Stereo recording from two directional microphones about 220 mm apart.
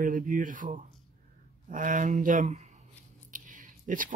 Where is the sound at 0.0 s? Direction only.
35° right (ahead or behind).